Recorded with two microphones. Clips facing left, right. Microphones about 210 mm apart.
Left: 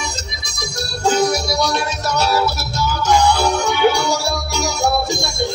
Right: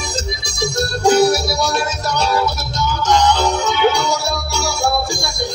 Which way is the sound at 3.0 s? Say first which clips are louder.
Even; 10° left (ahead or behind).